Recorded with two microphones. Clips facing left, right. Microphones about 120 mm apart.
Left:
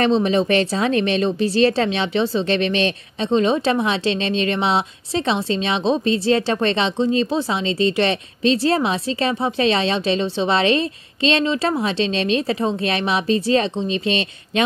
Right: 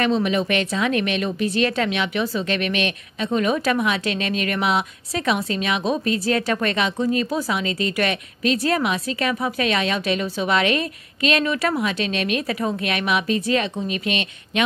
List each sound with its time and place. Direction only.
0.0 s speech: 30° left (ahead or behind)